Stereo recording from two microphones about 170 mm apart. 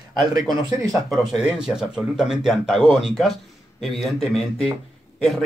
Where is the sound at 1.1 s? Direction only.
Centre (ahead or behind).